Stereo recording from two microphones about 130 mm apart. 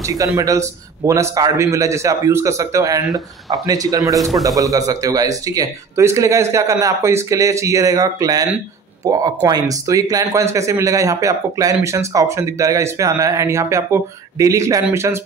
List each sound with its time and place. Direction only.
0.0 s speech: 25° right (ahead or behind)